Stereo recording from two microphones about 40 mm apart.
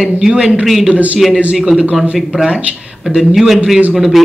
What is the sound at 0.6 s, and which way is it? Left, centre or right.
Speech, centre.